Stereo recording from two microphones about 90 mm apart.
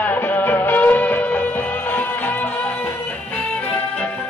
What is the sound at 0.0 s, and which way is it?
Music, 20° left (ahead or behind).